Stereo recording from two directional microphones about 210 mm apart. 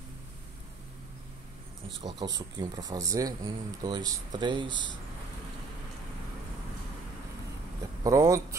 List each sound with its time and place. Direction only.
2.0 s speech: 20° right (ahead or behind)
8.0 s speech: 15° right (ahead or behind)